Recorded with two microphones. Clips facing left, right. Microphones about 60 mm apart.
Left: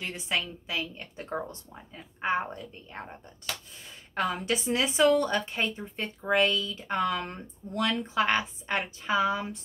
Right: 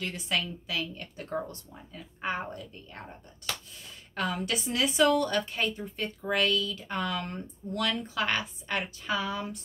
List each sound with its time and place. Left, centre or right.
0.0 s a woman's voice: left